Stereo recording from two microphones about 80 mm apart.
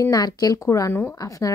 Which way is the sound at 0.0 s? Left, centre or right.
Left.